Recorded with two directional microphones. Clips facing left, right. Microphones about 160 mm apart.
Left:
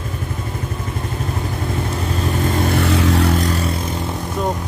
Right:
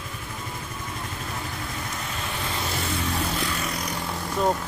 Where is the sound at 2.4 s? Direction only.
50° left (ahead or behind); by 3.3 s 80° left.